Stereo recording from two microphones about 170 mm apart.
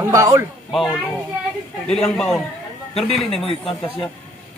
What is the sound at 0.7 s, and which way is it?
Speech, centre (ahead or behind).